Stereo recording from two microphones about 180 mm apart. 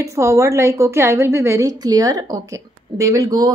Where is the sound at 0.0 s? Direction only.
15° right (ahead or behind).